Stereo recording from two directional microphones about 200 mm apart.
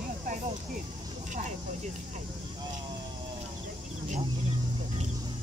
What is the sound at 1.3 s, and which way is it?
Speech, 35° right (ahead or behind).